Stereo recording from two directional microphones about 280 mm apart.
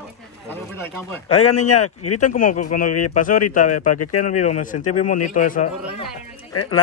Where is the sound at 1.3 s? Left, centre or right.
Left.